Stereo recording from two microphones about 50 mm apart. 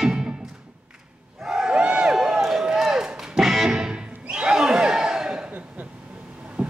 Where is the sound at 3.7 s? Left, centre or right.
Centre.